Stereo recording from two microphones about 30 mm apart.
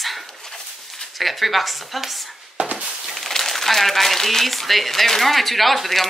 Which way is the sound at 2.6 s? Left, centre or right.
Right.